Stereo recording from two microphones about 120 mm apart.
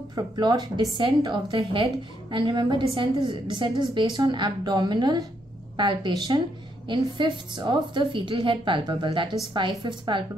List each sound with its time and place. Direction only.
0.1 s a woman's voice: 35° right (ahead or behind)